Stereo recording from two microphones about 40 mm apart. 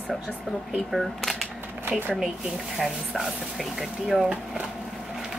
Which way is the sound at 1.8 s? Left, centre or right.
Right.